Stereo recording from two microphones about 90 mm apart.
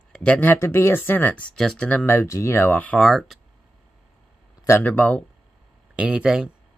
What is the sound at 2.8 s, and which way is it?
Speech, 10° left (ahead or behind).